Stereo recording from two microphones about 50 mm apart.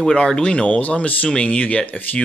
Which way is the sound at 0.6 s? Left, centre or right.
Left.